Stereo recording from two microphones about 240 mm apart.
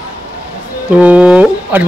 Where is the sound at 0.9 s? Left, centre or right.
Centre.